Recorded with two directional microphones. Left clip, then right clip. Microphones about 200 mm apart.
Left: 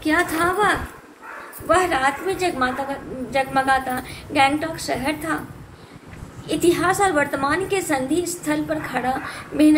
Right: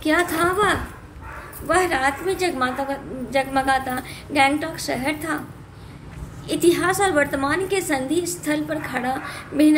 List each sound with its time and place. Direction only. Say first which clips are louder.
0.0 s a woman's voice: even; 55° right (ahead or behind)
6.4 s a woman's voice: even; 55° right (ahead or behind)